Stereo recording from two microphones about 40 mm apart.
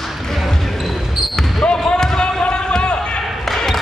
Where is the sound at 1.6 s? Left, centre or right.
Left.